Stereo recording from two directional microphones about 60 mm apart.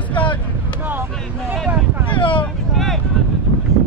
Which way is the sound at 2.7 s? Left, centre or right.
Centre.